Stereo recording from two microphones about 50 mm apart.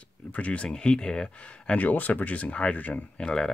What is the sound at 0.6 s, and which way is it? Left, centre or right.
Speech, centre.